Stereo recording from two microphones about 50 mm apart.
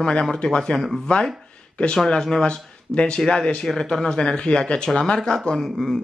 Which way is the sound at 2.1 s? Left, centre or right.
Centre.